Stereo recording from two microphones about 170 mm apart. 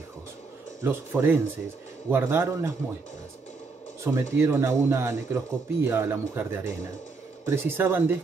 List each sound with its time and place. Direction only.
0.8 s speech: 15° right (ahead or behind)
4.0 s speech: 15° right (ahead or behind)